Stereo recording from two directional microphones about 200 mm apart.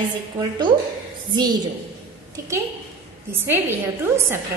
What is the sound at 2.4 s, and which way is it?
A woman's voice, 15° right (ahead or behind).